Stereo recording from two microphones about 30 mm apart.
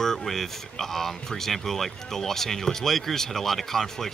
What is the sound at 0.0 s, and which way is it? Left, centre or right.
Speech, centre.